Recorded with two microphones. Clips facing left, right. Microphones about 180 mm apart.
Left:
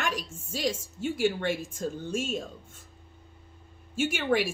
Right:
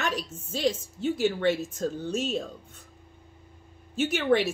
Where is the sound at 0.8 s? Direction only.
10° left (ahead or behind).